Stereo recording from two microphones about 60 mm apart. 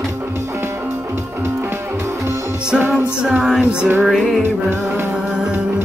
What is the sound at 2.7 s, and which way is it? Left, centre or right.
Music, right.